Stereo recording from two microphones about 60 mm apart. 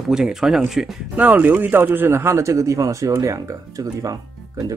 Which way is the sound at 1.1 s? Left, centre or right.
Right.